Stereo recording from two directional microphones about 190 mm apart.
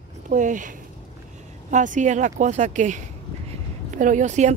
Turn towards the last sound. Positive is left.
turn(degrees=-40)  # may be behind; listen again after turning